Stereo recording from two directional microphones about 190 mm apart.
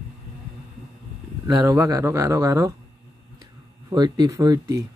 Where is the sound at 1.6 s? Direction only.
20° right (ahead or behind).